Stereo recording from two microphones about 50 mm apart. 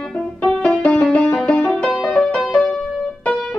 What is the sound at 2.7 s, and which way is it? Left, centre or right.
Keyboard, left.